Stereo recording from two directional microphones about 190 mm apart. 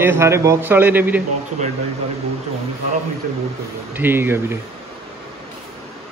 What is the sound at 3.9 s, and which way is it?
Speech, 10° right (ahead or behind).